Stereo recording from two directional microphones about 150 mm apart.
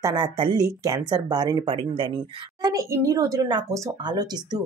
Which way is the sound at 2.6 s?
20° right (ahead or behind).